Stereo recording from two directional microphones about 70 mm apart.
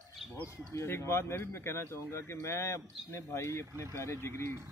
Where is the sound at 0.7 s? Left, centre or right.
Left.